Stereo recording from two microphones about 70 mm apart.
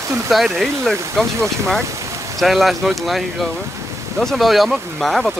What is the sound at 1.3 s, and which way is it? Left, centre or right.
Speech, right.